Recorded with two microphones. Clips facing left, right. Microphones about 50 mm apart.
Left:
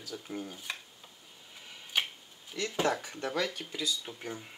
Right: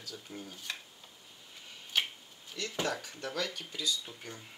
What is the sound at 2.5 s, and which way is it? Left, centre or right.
Speech, centre.